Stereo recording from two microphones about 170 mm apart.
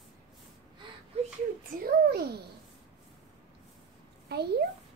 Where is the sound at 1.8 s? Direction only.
65° right (ahead or behind).